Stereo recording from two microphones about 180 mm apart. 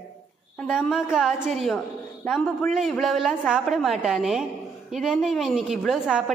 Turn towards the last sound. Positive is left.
turn(degrees=0)  # may be behind; listen again after turning